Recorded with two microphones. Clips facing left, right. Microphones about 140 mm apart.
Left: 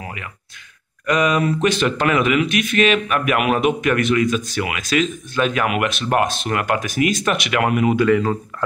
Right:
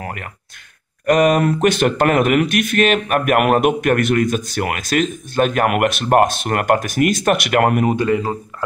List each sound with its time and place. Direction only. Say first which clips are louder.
0.0 s speech: right 4 dB; 55° right (ahead or behind)
7.9 s speech: left 2 dB; 25° right (ahead or behind)
8.2 s speech: left 2 dB; 10° right (ahead or behind)